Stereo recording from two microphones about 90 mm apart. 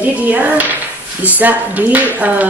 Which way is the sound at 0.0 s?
20° right (ahead or behind).